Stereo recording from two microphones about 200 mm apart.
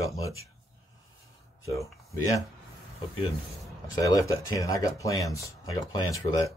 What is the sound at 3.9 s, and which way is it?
Speech, 15° left (ahead or behind).